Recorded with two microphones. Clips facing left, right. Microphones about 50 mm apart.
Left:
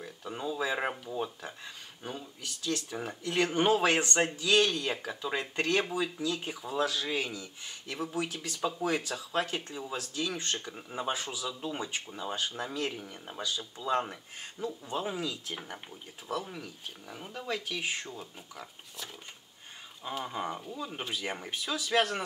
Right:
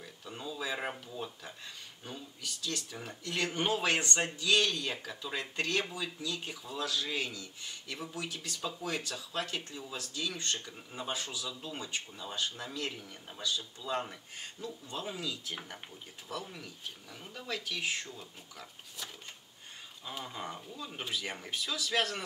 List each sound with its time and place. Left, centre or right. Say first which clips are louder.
0.0 s speech: left 6 dB; centre
2.0 s speech: left 4 dB; centre
8.1 s speech: left 5 dB; left
20.1 s speech: left 6 dB; centre